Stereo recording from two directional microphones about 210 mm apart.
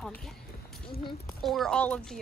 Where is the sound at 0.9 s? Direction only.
30° left (ahead or behind).